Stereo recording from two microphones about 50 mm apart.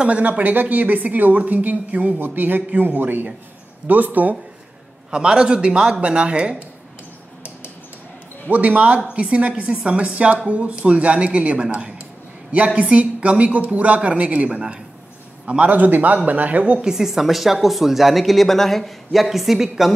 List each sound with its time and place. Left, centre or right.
0.0 s a woman's voice: right
5.1 s a woman's voice: centre
8.5 s a woman's voice: right
16.8 s speech: centre